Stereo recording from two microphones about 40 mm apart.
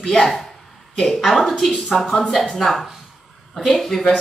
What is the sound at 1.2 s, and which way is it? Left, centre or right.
Speech, centre.